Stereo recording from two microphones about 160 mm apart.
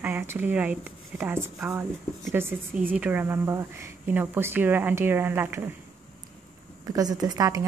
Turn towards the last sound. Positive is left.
turn(degrees=-25)  # may be behind; listen again after turning